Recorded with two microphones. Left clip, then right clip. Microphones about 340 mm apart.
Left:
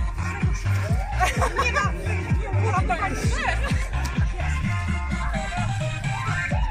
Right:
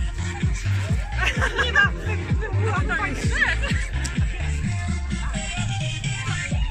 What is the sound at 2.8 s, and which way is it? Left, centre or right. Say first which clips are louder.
Music: even; centre.